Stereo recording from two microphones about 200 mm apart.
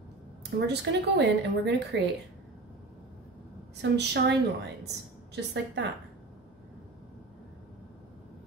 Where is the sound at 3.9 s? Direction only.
60° right (ahead or behind).